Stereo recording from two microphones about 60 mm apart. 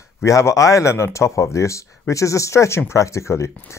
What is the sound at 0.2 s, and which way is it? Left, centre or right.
Speech, left.